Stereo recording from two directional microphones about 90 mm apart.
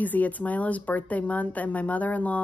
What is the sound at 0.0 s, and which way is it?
A woman's voice, 20° left (ahead or behind).